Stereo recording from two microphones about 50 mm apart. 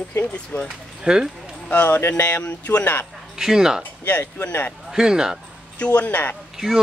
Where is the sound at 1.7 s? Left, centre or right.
Left.